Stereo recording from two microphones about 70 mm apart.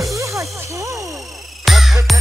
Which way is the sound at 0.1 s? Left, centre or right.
Right.